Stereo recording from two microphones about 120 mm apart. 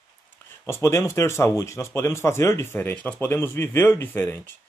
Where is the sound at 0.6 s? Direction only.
20° left (ahead or behind).